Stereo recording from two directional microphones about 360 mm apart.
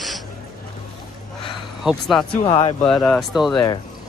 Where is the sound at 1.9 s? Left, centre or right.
Centre.